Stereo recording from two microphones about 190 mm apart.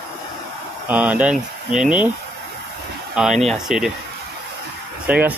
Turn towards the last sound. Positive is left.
turn(degrees=-5)  # may be behind; listen again after turning